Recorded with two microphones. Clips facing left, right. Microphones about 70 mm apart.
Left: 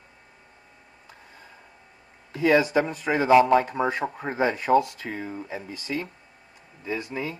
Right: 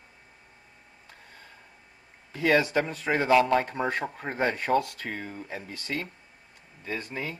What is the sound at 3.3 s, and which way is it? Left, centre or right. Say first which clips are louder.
Speech: left 5 dB; centre.